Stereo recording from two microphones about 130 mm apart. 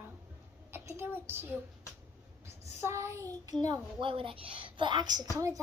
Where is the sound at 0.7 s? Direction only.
15° right (ahead or behind).